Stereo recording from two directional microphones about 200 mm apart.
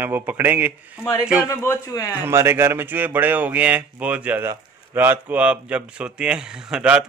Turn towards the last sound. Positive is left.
turn(degrees=-5)  # may be behind; listen again after turning